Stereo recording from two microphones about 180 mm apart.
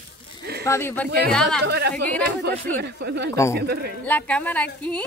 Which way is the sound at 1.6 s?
65° right (ahead or behind).